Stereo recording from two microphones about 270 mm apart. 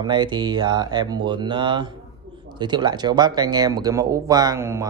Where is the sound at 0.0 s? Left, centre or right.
Centre.